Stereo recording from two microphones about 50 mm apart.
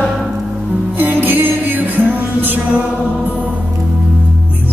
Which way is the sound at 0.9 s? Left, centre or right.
Right.